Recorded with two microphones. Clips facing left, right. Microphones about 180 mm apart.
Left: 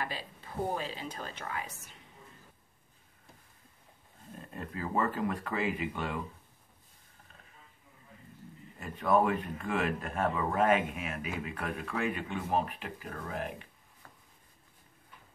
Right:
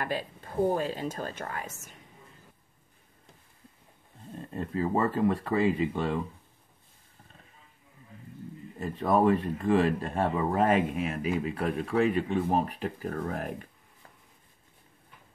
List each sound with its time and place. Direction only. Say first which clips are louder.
0.0 s speech: right 6 dB; 50° right (ahead or behind)
4.4 s speech: right 8 dB; 30° right (ahead or behind)
8.7 s speech: right 2 dB; 35° right (ahead or behind)